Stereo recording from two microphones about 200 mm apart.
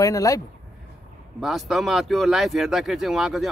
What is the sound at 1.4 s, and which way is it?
Speech, centre (ahead or behind).